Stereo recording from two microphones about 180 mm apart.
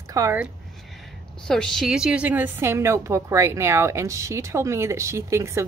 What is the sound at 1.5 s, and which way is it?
A woman's voice, 5° left (ahead or behind).